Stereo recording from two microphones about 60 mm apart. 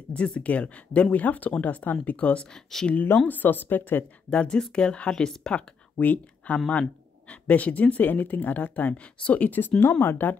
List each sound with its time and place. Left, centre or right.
0.1 s speech: centre
2.5 s speech: centre
3.3 s speech: left
4.3 s speech: centre
5.9 s speech: left